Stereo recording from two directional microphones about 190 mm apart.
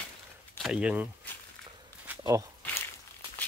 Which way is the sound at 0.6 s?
5° right (ahead or behind).